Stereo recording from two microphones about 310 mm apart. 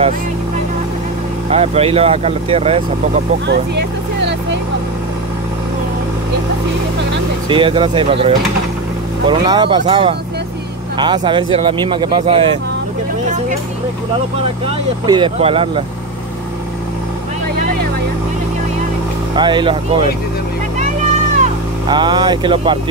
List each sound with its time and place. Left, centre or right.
1.5 s speech: centre
3.4 s vehicle: right
7.4 s speech: centre
15.0 s speech: centre
19.3 s speech: centre
21.4 s speech: centre